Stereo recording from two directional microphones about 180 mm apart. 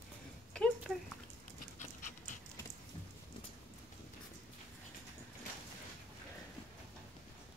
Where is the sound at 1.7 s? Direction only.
45° left (ahead or behind).